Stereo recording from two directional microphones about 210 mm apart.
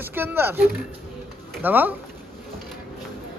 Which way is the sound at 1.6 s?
10° right (ahead or behind).